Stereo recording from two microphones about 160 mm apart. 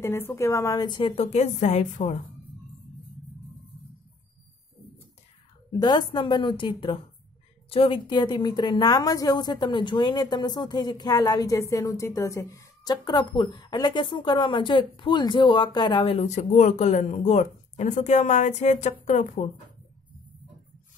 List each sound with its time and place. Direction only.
0.0 s a woman's voice: 15° left (ahead or behind)
1.1 s a woman's voice: 40° left (ahead or behind)
5.7 s a woman's voice: 25° left (ahead or behind); by 19.4 s 50° left (ahead or behind)